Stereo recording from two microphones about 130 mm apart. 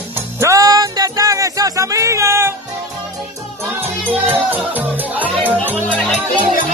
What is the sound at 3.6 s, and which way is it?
Music, 15° right (ahead or behind).